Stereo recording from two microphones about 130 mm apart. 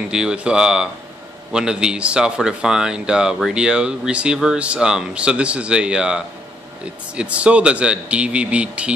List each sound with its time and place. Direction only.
0.1 s speech: 5° right (ahead or behind)